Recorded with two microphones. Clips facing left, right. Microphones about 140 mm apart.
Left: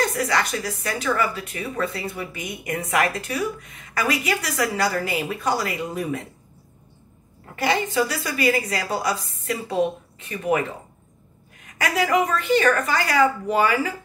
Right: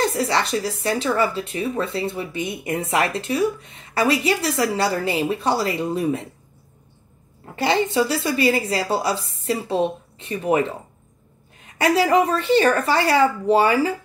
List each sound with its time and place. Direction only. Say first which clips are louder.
0.0 s speech: right 2 dB; 30° right (ahead or behind)
7.5 s speech: right 3 dB; 25° right (ahead or behind)